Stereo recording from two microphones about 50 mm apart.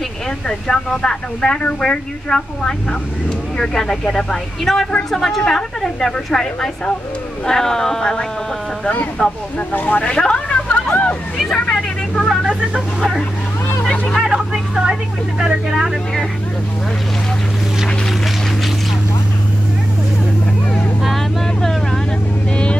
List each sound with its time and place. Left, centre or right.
0.5 s speech: centre
9.8 s speech: left
10.1 s a sound: centre
11.5 s vehicle: centre
13.8 s vehicle: centre
14.2 s a sound: centre
21.5 s vehicle: centre